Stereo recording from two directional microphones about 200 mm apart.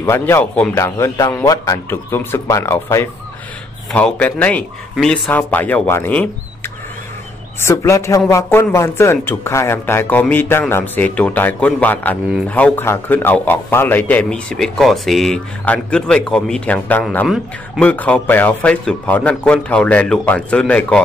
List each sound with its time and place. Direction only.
0.0 s speech: 15° left (ahead or behind)
7.6 s speech: 15° left (ahead or behind)